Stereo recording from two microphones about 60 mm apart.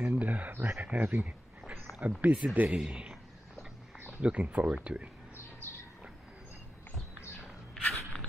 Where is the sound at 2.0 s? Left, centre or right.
Right.